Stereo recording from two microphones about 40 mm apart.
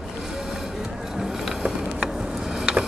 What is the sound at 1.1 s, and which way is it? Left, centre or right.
Mechanisms, centre.